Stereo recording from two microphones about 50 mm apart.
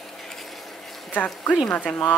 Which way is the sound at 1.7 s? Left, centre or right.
Left.